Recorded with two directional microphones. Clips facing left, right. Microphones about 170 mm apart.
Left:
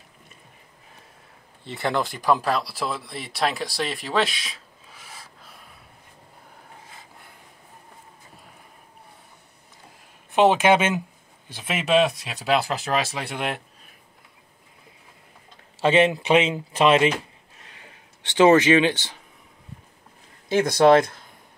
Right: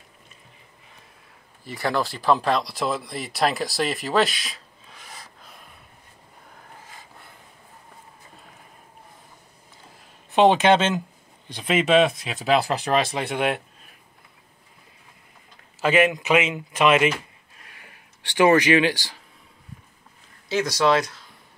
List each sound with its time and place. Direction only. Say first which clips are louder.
1.6 s speech: even; 25° left (ahead or behind); by 5.3 s 5° left (ahead or behind)
10.3 s speech: right 1 dB; 5° left (ahead or behind)
15.8 s speech: left 1 dB; 30° left (ahead or behind)
20.4 s speech: left 5 dB; 55° left (ahead or behind)